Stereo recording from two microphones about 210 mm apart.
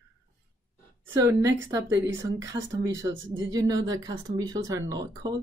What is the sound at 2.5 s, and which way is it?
Speech, 15° right (ahead or behind).